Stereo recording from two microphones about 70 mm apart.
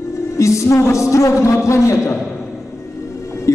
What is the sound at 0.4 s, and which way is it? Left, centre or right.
Speech, left.